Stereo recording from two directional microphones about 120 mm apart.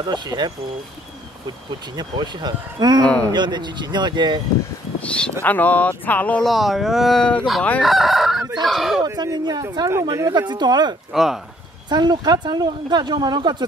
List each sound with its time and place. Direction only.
0.0 s speech: 35° right (ahead or behind)
2.0 s speech: 40° right (ahead or behind)
5.0 s speech: 10° left (ahead or behind)
6.4 s speech: centre (ahead or behind)
7.8 s chicken: centre (ahead or behind)
8.6 s speech: centre (ahead or behind)
9.0 s speech: 35° right (ahead or behind)
10.5 s speech: 35° right (ahead or behind)
11.1 s speech: centre (ahead or behind)
11.9 s speech: 35° right (ahead or behind)